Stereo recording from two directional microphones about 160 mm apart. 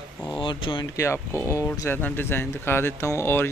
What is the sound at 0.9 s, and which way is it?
Speech, 15° left (ahead or behind).